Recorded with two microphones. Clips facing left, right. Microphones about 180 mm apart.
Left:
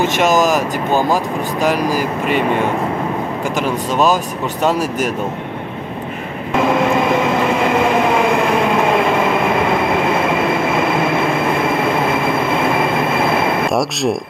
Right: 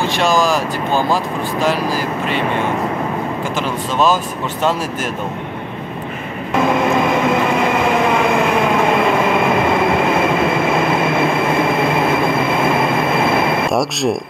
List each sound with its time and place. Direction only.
0.3 s speech: 20° left (ahead or behind)
3.6 s speech: 10° left (ahead or behind)
13.7 s a sound: centre (ahead or behind)